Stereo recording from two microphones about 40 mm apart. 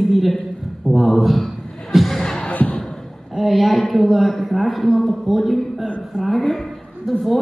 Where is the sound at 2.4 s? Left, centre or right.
Left.